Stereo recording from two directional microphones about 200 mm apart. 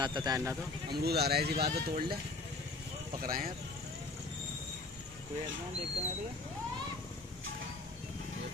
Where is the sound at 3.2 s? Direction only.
45° right (ahead or behind).